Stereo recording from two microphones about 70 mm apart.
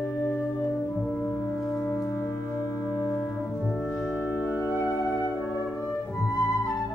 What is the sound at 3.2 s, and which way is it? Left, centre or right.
French horn, centre.